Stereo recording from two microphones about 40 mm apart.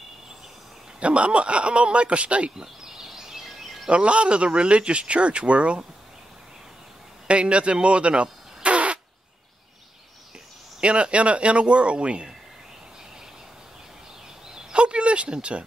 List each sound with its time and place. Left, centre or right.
0.9 s speech: right
2.5 s a sound: centre
3.8 s a man's voice: right
7.2 s fart: right
10.8 s a man's voice: right
14.7 s a sound: right